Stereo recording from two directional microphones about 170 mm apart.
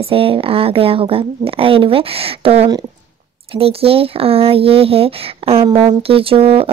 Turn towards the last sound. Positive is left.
turn(degrees=-35)  # may be behind; listen again after turning